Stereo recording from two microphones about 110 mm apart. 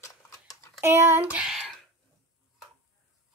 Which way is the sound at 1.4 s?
5° right (ahead or behind).